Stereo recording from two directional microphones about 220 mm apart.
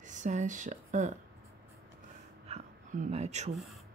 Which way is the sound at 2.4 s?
30° right (ahead or behind).